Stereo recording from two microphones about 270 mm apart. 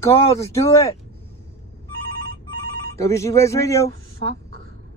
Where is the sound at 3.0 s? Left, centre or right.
Centre.